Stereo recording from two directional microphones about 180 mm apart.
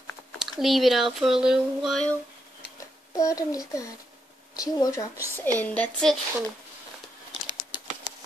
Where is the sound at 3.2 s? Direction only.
20° left (ahead or behind).